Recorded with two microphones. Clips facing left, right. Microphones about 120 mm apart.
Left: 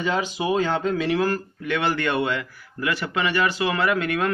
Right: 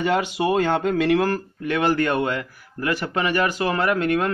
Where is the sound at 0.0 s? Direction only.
60° right (ahead or behind).